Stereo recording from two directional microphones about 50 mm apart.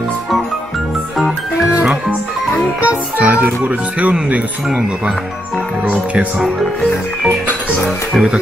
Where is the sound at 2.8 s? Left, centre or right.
Right.